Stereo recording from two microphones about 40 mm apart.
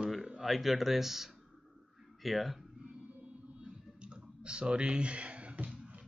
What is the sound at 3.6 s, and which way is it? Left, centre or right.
Clicking, right.